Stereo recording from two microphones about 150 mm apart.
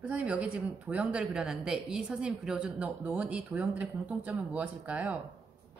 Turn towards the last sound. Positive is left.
turn(degrees=-10)  # may be behind; listen again after turning